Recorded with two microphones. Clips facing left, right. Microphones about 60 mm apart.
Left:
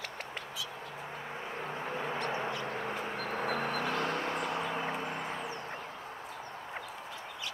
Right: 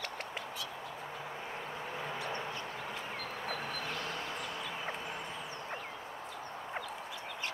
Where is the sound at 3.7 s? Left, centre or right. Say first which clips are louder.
Left 6 dB; left.